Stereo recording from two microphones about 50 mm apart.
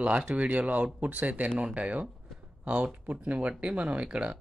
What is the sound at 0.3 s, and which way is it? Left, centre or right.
Speech, right.